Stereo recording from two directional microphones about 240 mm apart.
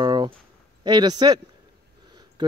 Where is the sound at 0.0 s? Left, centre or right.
Centre.